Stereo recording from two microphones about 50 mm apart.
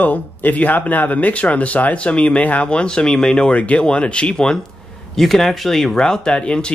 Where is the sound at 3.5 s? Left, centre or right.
Left.